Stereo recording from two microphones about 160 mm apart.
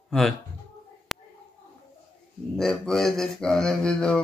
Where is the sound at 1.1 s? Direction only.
Centre (ahead or behind).